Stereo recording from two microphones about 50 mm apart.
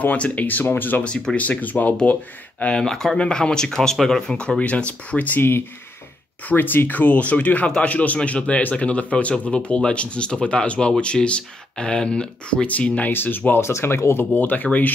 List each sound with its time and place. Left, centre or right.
0.2 s speech: left
1.0 s speech: left
1.4 s speech: left
2.8 s speech: centre
4.6 s speech: left
6.4 s speech: left
13.1 s speech: left
13.5 s speech: left
14.3 s speech: left